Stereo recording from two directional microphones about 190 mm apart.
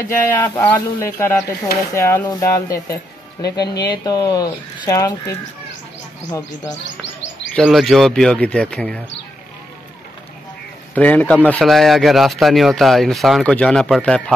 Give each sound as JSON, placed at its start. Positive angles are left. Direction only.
{"t": 0.1, "sound": "speech", "side_deg": 10}
{"t": 7.5, "sound": "speech", "side_deg": 5}
{"t": 11.0, "sound": "speech", "side_deg": 10}